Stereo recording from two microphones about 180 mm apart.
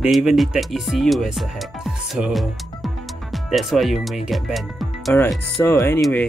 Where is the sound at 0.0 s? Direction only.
5° right (ahead or behind).